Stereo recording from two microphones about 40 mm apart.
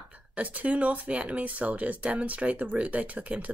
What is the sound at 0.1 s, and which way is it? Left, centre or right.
Speech, right.